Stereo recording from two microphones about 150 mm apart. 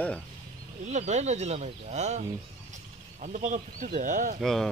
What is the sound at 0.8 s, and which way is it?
Speech, 50° right (ahead or behind).